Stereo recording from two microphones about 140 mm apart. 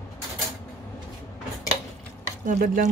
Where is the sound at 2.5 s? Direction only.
70° right (ahead or behind).